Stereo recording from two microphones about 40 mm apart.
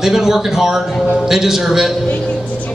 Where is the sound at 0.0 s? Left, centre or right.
Centre.